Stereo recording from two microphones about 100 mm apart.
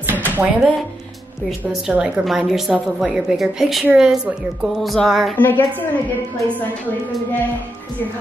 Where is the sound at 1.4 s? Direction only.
10° right (ahead or behind).